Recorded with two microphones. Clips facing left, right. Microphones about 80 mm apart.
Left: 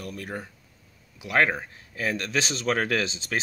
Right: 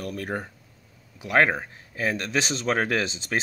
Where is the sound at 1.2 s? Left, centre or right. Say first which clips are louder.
Right 2 dB; right.